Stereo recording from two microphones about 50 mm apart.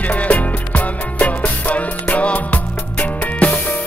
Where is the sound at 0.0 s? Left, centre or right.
Left.